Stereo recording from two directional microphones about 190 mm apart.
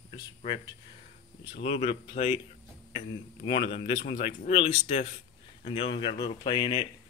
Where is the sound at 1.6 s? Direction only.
30° left (ahead or behind).